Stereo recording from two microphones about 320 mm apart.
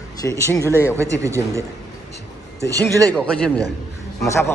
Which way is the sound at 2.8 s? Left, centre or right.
Centre.